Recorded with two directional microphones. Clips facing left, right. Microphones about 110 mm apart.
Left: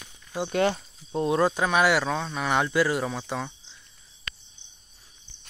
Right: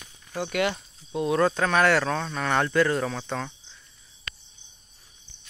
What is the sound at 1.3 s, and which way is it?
Speech, 15° left (ahead or behind).